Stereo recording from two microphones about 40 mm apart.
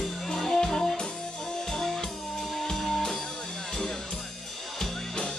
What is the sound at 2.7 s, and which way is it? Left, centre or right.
Music, centre.